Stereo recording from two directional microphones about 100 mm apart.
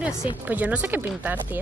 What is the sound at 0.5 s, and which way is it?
Speech, 15° right (ahead or behind).